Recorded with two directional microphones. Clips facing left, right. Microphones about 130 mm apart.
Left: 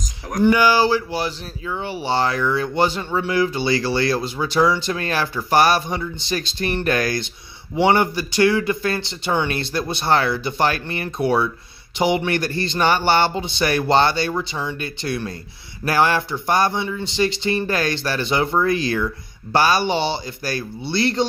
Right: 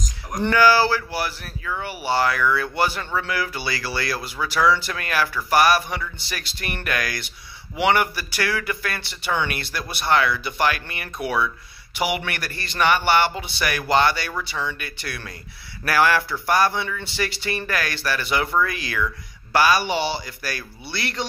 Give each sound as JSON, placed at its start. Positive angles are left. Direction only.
{"t": 0.5, "sound": "speech", "side_deg": 15}